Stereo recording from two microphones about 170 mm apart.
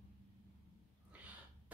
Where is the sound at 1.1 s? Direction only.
10° right (ahead or behind).